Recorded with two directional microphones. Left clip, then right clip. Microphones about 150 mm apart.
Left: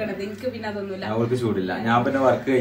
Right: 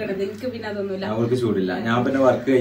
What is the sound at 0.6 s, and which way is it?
A man's voice, centre (ahead or behind).